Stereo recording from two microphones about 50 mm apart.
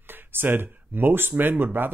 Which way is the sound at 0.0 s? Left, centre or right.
Right.